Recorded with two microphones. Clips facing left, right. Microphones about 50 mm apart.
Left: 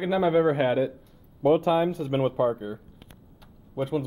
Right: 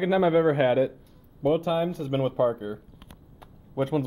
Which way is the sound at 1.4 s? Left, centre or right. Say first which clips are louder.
Left 3 dB; centre.